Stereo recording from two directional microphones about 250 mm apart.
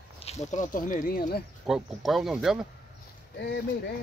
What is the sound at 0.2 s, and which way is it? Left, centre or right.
Speech, left.